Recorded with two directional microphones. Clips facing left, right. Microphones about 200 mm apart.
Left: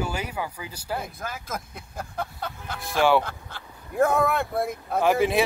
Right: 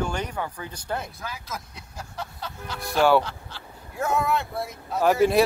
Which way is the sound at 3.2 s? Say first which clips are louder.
Even; 55° left (ahead or behind).